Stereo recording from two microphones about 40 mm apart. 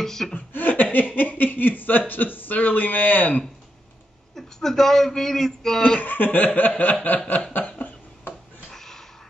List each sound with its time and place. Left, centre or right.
0.0 s speech: centre
0.5 s chuckle: left
0.9 s speech: left
4.4 s speech: centre
5.9 s speech: left
7.5 s a sound: left
8.6 s a sound: centre